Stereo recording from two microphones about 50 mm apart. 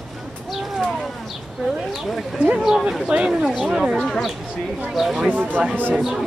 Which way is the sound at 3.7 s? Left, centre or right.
Centre.